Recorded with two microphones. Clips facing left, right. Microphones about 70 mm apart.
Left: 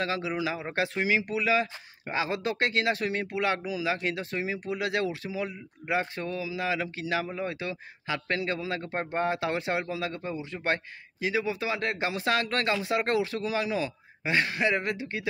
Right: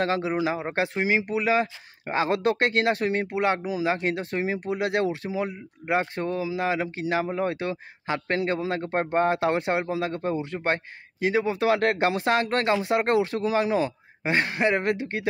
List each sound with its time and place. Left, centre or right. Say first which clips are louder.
0.0 s speech: right 5 dB; right
7.3 s speech: right 6 dB; right
11.5 s speech: right 8 dB; right